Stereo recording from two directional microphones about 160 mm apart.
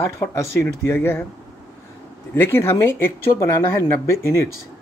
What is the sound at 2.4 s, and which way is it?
Speech, 15° left (ahead or behind).